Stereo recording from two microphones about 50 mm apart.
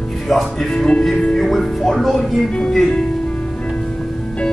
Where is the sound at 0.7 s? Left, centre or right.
Centre.